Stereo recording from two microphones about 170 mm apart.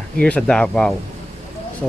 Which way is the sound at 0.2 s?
5° left (ahead or behind).